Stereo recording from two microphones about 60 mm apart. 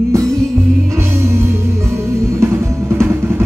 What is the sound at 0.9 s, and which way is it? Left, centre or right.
Music, right.